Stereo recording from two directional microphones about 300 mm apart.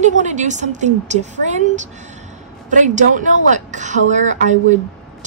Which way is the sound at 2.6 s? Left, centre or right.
Right.